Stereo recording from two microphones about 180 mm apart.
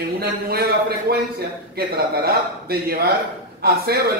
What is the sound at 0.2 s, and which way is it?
A man's voice, 60° right (ahead or behind).